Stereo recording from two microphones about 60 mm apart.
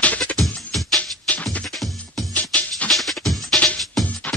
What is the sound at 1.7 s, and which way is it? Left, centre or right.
Music, centre.